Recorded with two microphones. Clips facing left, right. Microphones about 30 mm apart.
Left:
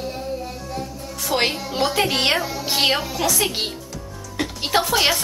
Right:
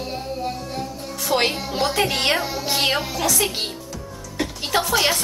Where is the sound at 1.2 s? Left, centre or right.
Centre.